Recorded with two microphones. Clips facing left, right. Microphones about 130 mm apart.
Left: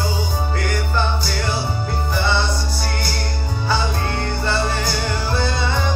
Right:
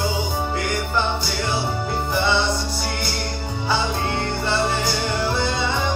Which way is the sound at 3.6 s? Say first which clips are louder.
Even; 20° right (ahead or behind).